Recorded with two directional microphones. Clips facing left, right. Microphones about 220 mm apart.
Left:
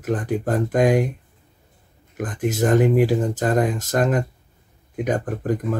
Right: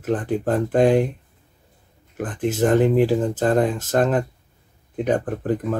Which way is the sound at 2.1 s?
10° left (ahead or behind).